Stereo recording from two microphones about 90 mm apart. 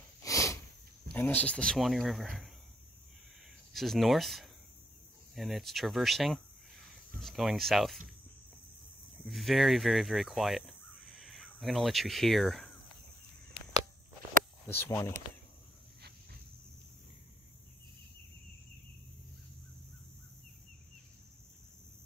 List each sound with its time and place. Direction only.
0.2 s a sound: 40° left (ahead or behind)
1.1 s speech: 20° left (ahead or behind)
1.8 s speech: centre (ahead or behind)
3.7 s speech: centre (ahead or behind)
9.3 s speech: centre (ahead or behind)
14.7 s speech: 25° left (ahead or behind)